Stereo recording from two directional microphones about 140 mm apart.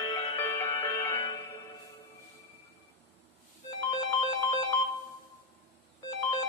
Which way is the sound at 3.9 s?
30° left (ahead or behind).